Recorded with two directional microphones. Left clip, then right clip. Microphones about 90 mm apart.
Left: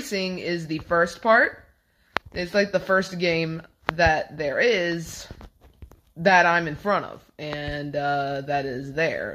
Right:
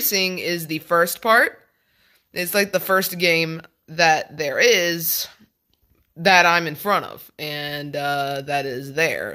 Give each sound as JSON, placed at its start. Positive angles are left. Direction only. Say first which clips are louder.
{"t": 0.1, "sound": "speech", "louder": "right 5 dB", "side_deg": -45}